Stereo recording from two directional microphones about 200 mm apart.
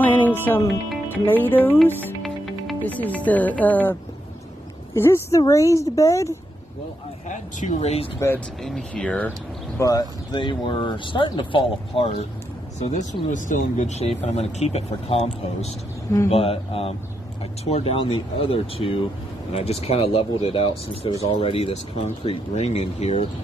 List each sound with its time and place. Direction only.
0.0 s music: 10° left (ahead or behind)
0.8 s speech: 10° left (ahead or behind)
4.9 s speech: 15° left (ahead or behind)
7.2 s speech: 35° left (ahead or behind)
8.6 s speech: 5° left (ahead or behind)
9.8 s speech: 20° left (ahead or behind)